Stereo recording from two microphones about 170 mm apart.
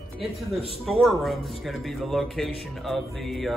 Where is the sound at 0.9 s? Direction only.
Centre (ahead or behind).